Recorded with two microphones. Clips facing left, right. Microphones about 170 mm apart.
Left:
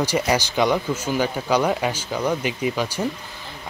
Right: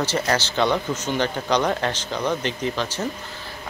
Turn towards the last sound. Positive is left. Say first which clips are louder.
# left 2 dB
turn(degrees=10)  # may be behind; listen again after turning